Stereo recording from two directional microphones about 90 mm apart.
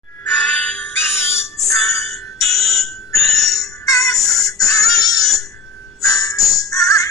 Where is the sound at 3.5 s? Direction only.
40° left (ahead or behind).